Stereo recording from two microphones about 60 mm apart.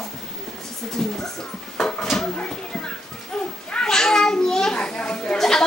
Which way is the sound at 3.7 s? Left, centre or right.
Centre.